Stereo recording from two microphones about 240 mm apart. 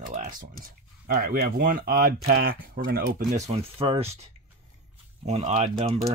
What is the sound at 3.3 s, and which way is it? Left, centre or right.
Speech, right.